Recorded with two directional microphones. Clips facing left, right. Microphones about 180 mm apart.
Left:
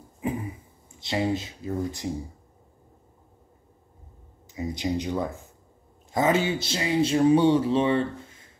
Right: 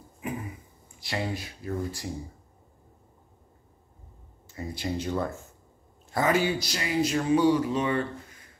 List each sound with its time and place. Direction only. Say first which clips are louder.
0.9 s speech: left 6 dB; 25° left (ahead or behind)
4.5 s speech: left 4 dB; 20° left (ahead or behind)